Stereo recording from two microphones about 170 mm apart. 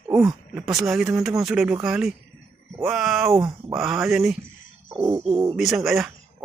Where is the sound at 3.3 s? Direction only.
15° right (ahead or behind).